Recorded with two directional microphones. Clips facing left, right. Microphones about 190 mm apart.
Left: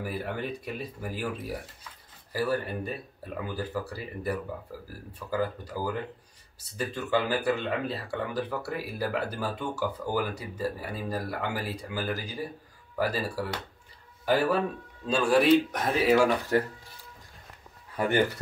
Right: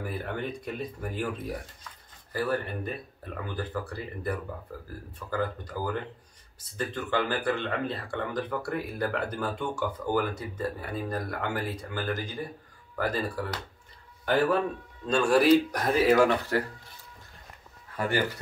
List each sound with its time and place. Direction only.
0.0 s speech: 5° left (ahead or behind)
6.8 s speech: 10° left (ahead or behind)
16.3 s speech: 15° left (ahead or behind)
17.9 s speech: 20° left (ahead or behind)